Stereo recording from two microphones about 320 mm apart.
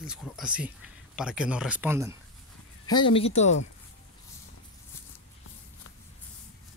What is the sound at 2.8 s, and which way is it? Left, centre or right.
Speech, centre.